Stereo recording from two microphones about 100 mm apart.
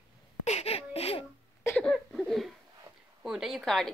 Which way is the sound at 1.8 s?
5° left (ahead or behind).